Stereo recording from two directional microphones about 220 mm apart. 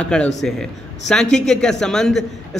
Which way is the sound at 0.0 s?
5° left (ahead or behind).